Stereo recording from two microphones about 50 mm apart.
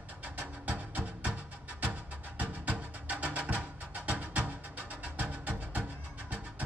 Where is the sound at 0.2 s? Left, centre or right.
Right.